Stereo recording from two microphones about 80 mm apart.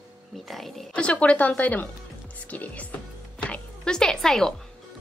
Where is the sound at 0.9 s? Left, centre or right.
Centre.